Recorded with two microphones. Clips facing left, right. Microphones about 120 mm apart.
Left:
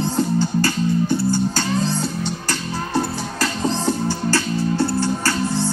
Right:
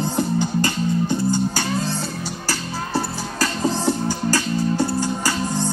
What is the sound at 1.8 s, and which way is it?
Music, 5° right (ahead or behind).